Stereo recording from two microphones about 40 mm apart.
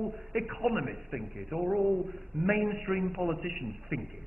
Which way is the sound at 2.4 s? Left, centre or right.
Centre.